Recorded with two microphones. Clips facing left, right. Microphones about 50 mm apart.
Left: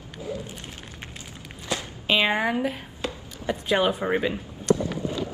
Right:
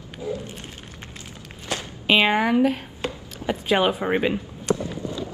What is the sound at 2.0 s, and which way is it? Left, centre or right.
Speech, right.